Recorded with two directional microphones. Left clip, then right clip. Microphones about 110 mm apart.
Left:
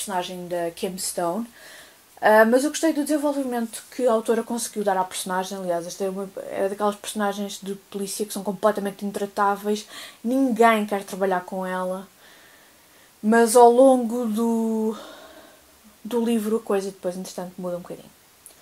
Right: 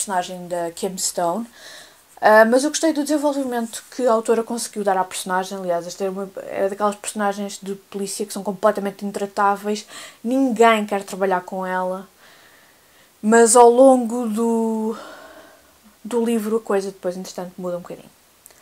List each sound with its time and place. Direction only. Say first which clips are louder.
0.0 s a woman's voice: right 4 dB; 45° right (ahead or behind)
2.1 s speech: right 3 dB; 30° right (ahead or behind); by 12.0 s 5° right (ahead or behind)
13.2 s a woman's voice: right 3 dB; 35° right (ahead or behind)
13.7 s speech: right 3 dB; 20° right (ahead or behind)